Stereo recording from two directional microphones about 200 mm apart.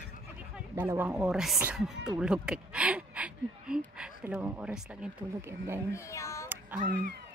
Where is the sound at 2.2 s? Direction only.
5° right (ahead or behind).